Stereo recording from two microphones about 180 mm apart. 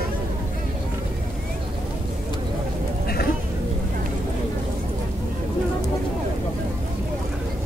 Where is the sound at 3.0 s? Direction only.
60° left (ahead or behind).